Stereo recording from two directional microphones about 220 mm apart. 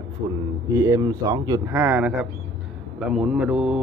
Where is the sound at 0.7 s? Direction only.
15° right (ahead or behind).